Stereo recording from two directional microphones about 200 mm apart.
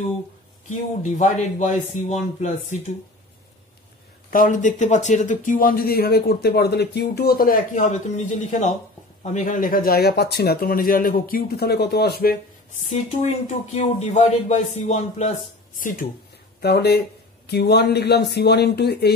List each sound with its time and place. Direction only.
1.1 s a man's voice: 35° left (ahead or behind)
4.3 s speech: 40° left (ahead or behind)
12.9 s a man's voice: 35° left (ahead or behind)
16.6 s speech: 55° left (ahead or behind)